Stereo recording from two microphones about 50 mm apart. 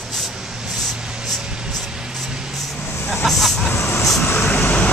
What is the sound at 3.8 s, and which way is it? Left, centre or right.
Vehicle, left.